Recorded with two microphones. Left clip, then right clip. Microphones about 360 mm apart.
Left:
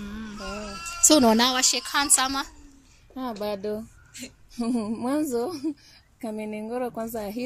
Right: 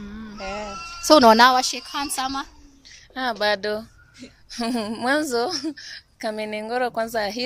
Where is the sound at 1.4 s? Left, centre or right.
Centre.